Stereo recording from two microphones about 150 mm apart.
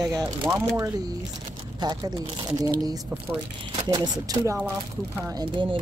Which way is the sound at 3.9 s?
25° right (ahead or behind).